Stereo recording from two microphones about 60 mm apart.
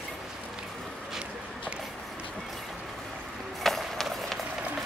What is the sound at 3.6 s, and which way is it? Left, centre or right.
Music, centre.